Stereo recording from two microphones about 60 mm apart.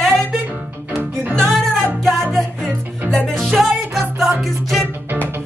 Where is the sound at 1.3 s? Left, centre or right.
Centre.